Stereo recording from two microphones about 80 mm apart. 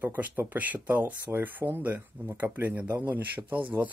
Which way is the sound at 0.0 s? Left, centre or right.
Right.